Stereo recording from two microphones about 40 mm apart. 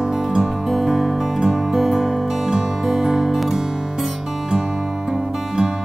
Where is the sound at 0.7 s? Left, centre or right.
Centre.